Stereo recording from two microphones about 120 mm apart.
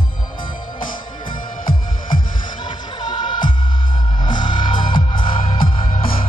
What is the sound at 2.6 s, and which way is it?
Music, 40° left (ahead or behind).